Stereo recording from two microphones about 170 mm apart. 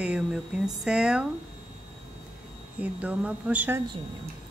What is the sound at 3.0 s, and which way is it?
Speech, 10° right (ahead or behind).